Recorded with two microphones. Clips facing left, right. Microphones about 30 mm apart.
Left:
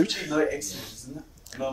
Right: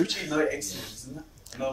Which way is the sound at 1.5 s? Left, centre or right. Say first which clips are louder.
Even; centre.